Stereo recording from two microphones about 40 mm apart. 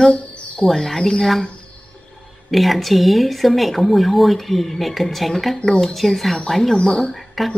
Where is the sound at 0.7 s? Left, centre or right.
Centre.